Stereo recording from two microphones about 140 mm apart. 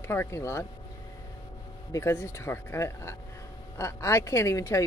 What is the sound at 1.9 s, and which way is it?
Speech, 20° left (ahead or behind).